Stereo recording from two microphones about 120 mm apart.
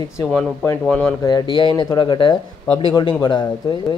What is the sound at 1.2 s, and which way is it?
Speech, 35° left (ahead or behind).